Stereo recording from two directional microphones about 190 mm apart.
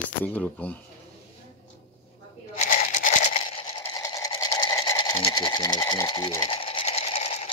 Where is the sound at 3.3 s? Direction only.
30° left (ahead or behind).